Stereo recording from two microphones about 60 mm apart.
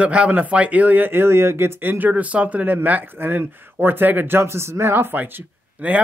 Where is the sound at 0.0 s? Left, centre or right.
Right.